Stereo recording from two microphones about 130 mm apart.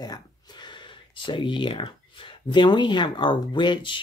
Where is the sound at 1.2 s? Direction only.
40° left (ahead or behind).